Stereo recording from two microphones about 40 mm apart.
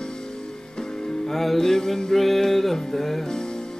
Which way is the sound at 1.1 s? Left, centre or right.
Centre.